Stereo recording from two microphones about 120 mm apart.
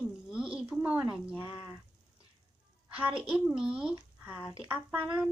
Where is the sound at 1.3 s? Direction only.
20° right (ahead or behind).